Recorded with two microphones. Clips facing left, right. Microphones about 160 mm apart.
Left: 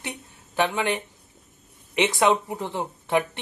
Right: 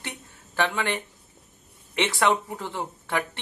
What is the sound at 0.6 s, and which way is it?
Speech, 20° left (ahead or behind).